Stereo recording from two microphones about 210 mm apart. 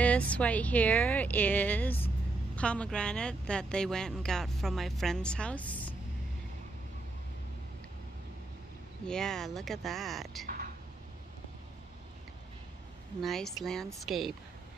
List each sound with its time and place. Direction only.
0.0 s a woman's voice: 5° left (ahead or behind)
9.0 s a woman's voice: 5° left (ahead or behind)
13.2 s a woman's voice: centre (ahead or behind)